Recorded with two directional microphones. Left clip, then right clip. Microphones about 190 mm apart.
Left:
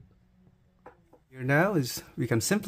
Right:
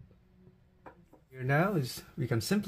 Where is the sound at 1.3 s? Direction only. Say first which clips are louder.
Left 5 dB; 30° left (ahead or behind).